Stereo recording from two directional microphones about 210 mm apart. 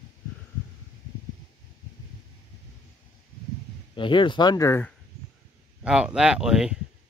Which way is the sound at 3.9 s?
25° left (ahead or behind).